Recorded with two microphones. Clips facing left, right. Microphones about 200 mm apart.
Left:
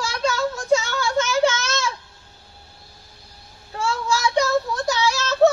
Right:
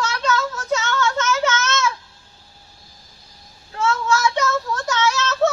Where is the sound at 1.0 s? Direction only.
10° left (ahead or behind).